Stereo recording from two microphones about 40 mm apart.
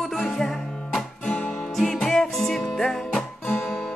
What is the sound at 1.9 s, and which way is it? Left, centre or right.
Music, centre.